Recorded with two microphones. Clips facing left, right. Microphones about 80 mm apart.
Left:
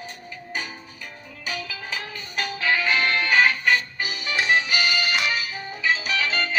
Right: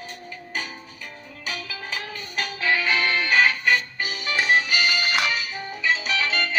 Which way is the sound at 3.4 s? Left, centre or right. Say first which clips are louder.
Even; centre.